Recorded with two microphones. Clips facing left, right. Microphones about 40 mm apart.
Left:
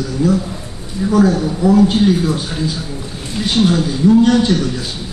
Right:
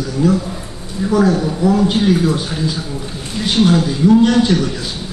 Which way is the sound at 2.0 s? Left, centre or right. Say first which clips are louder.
Even; centre.